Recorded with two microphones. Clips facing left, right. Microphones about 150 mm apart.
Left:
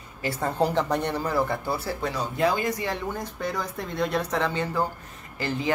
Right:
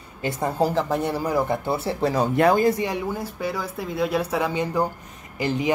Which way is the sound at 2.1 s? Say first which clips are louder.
Right 6 dB; 60° right (ahead or behind).